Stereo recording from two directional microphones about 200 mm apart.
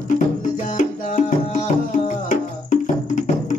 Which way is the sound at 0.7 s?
40° left (ahead or behind).